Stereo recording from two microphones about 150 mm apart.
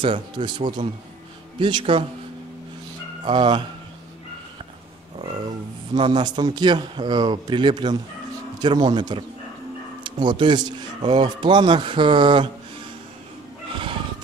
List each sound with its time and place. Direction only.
0.0 s speech: 35° right (ahead or behind)
3.3 s speech: 30° right (ahead or behind)
5.9 s a man's voice: 30° right (ahead or behind)